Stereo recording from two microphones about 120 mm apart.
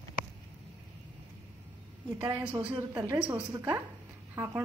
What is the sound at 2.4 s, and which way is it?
Speech, 10° right (ahead or behind).